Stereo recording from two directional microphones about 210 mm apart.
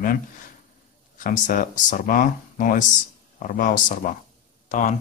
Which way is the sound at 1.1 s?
40° left (ahead or behind).